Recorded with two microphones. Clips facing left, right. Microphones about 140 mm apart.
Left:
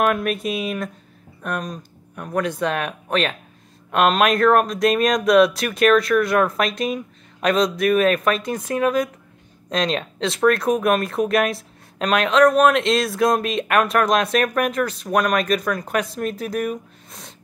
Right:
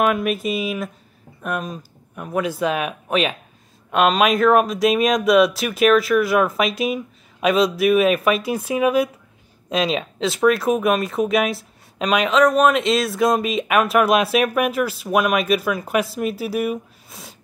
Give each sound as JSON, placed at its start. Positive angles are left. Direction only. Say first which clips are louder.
{"t": 0.0, "sound": "speech", "louder": "right 1 dB", "side_deg": 0}